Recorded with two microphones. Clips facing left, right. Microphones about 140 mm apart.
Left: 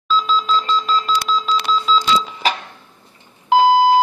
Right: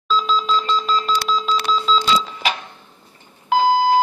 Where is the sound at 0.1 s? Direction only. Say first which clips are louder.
Left 1 dB; centre (ahead or behind).